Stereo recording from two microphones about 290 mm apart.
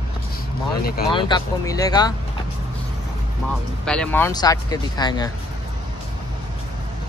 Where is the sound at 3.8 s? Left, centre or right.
Centre.